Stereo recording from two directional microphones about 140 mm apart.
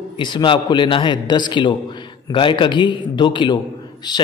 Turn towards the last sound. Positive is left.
turn(degrees=30)  # may be behind; listen again after turning